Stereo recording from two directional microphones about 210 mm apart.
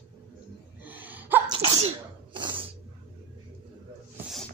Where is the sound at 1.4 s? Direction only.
25° right (ahead or behind).